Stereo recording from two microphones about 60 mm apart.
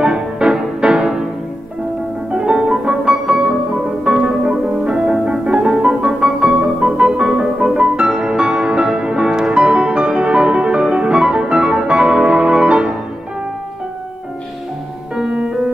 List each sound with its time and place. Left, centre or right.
0.0 s music: centre
2.3 s music: centre
4.3 s music: centre
6.2 s piano: centre
7.9 s music: centre
15.1 s music: centre